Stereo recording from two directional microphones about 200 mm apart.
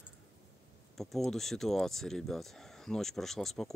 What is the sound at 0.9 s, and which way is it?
Speech, centre (ahead or behind).